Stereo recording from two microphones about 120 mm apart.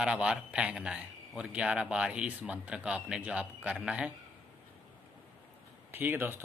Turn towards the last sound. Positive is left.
turn(degrees=-20)  # may be behind; listen again after turning